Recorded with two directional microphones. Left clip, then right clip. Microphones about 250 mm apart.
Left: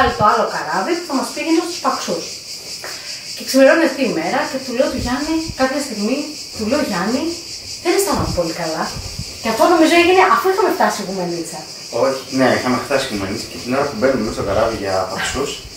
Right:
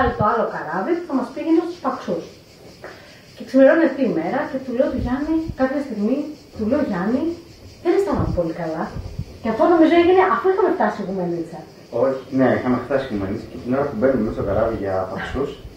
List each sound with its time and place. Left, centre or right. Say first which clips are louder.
0.0 s speech: left 5 dB; centre
1.3 s speech: even; centre
3.4 s speech: left 2 dB; centre
8.1 s speech: left 3 dB; centre
15.1 s speech: left 4 dB; centre